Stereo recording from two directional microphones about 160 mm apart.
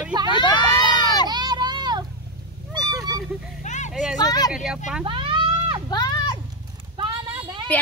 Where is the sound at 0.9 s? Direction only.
25° left (ahead or behind).